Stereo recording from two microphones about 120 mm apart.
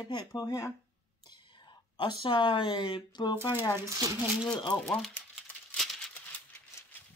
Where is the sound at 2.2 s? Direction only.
45° left (ahead or behind).